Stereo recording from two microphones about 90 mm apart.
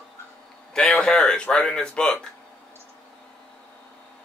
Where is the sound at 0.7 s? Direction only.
5° left (ahead or behind).